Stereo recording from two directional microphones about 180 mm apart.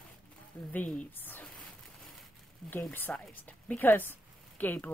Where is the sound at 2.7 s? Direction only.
10° left (ahead or behind).